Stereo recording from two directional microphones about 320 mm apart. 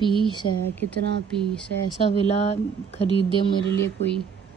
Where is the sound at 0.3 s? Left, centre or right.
Centre.